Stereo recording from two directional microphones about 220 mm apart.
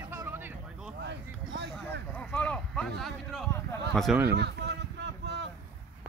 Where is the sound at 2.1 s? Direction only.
5° left (ahead or behind).